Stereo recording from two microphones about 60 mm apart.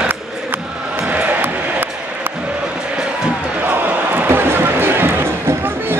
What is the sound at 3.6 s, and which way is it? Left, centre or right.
Basketball bounce, right.